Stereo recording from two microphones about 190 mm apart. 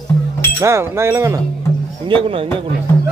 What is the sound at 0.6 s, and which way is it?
Speech, 15° right (ahead or behind).